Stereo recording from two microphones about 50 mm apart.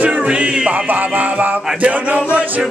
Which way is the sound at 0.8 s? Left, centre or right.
Right.